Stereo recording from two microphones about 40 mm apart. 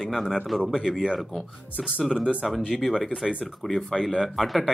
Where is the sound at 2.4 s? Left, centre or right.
Centre.